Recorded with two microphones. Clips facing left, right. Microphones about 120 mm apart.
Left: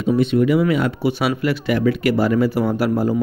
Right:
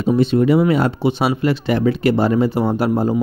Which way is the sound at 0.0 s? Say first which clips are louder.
Right 1 dB; 30° right (ahead or behind).